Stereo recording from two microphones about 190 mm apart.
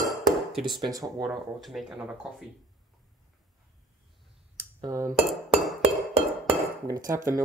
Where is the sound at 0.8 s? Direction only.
20° right (ahead or behind).